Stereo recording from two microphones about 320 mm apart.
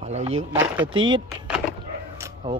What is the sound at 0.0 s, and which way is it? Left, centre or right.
Speech, centre.